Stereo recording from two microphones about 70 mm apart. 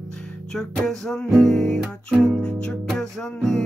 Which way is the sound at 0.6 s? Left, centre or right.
Centre.